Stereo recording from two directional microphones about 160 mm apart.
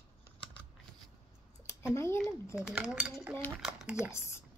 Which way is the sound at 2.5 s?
5° right (ahead or behind).